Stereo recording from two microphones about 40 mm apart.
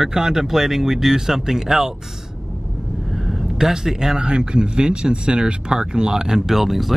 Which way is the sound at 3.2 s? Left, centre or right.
Centre.